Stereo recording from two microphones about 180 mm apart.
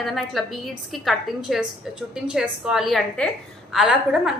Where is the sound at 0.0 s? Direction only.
Centre (ahead or behind).